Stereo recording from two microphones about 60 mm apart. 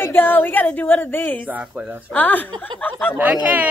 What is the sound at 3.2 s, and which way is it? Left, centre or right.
Speech, right.